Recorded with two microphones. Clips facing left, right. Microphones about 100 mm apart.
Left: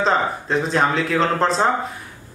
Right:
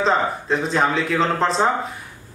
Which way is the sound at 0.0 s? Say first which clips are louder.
Even; centre (ahead or behind).